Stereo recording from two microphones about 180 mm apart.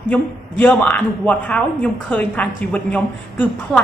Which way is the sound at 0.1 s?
10° left (ahead or behind).